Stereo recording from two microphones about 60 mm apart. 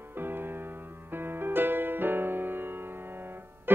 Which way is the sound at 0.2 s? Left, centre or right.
Right.